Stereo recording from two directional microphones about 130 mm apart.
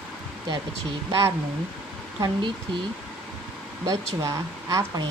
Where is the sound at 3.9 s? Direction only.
25° right (ahead or behind).